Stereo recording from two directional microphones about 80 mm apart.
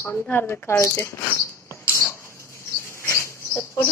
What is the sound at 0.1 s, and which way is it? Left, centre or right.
Speech, left.